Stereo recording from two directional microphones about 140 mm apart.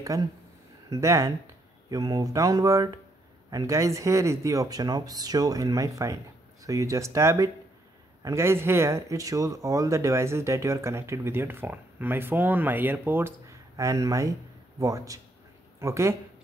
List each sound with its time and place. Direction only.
0.1 s speech: 25° right (ahead or behind)